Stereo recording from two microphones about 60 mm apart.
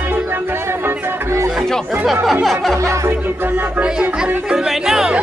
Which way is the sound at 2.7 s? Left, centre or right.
Right.